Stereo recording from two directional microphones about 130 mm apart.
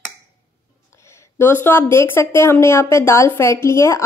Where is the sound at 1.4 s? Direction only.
15° left (ahead or behind).